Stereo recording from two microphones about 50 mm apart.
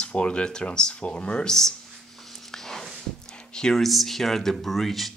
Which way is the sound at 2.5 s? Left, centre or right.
Centre.